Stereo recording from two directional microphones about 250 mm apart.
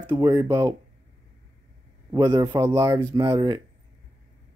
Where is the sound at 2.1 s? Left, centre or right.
Centre.